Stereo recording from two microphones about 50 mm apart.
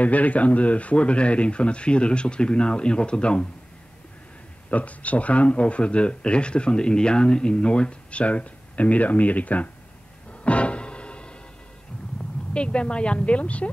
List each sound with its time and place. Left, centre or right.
0.0 s speech: left
4.6 s speech: left
10.4 s music: left
12.5 s speech: left